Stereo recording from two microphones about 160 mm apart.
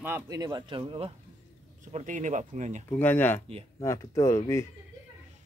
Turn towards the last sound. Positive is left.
turn(degrees=20)  # may be behind; listen again after turning